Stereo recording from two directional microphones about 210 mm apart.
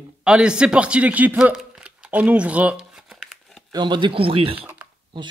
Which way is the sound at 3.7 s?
20° right (ahead or behind).